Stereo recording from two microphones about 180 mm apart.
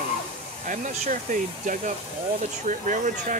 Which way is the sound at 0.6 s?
45° right (ahead or behind).